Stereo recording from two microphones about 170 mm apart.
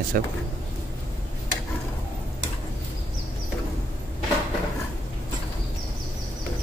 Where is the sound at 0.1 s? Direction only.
60° right (ahead or behind).